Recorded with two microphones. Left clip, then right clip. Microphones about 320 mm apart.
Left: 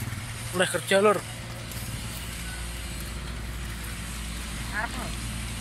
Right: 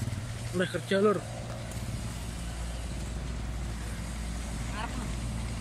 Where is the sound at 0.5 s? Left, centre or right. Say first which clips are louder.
Left 6 dB; left.